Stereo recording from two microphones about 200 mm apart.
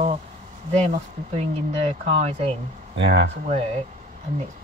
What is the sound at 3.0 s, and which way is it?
Speech, 65° right (ahead or behind).